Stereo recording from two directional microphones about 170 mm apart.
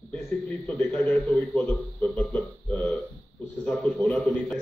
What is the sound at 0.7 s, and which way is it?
Speech, 5° left (ahead or behind).